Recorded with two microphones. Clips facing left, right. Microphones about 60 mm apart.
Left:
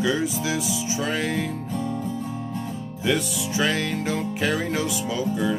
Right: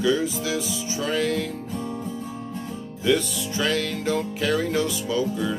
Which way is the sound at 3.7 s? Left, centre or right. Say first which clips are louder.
Even; centre.